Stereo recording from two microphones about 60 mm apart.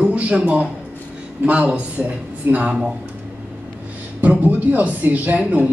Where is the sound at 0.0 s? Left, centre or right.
Centre.